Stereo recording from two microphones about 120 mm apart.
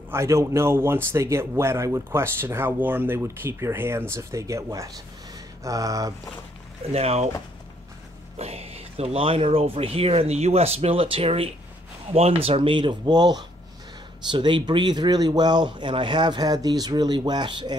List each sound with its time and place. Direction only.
0.1 s speech: 25° right (ahead or behind)
6.9 s speech: 60° right (ahead or behind)
8.4 s speech: 60° right (ahead or behind); by 17.7 s 40° right (ahead or behind)